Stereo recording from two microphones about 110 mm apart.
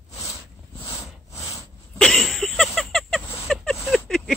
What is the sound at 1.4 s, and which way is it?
Dog, 30° left (ahead or behind).